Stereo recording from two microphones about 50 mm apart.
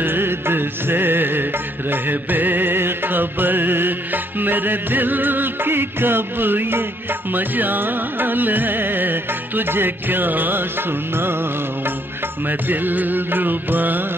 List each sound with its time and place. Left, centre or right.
0.0 s music: right